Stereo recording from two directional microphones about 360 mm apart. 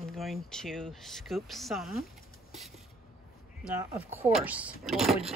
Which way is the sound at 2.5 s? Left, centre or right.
Centre.